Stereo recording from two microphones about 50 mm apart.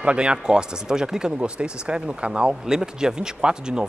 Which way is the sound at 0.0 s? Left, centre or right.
Right.